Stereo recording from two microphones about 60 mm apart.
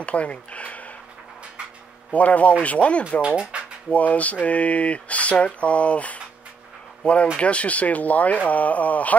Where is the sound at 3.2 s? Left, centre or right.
Centre.